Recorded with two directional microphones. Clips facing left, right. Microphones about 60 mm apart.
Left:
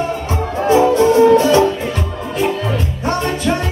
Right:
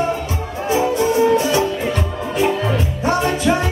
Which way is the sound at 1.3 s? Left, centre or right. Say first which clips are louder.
Left 5 dB; left.